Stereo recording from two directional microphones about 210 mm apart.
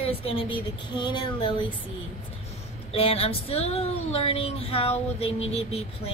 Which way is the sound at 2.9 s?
25° left (ahead or behind).